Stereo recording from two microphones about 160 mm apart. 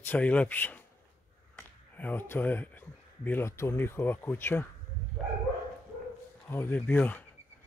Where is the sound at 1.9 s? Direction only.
10° left (ahead or behind).